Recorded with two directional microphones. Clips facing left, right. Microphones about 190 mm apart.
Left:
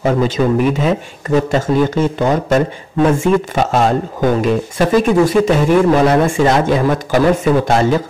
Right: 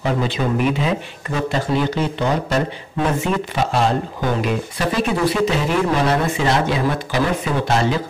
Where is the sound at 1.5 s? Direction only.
45° left (ahead or behind).